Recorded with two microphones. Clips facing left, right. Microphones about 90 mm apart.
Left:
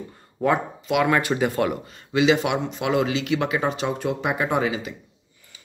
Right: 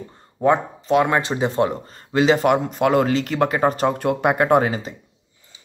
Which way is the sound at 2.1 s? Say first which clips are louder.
Right 3 dB; 40° right (ahead or behind).